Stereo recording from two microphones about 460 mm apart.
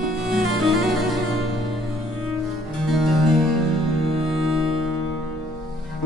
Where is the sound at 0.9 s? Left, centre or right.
Centre.